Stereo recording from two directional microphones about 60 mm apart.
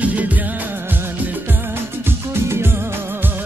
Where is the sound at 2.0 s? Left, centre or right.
Right.